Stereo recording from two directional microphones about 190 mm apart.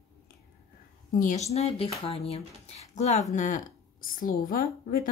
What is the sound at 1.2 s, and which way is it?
A woman's voice, 40° left (ahead or behind).